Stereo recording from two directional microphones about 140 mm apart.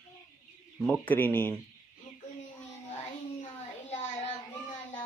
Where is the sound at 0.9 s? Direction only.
10° left (ahead or behind).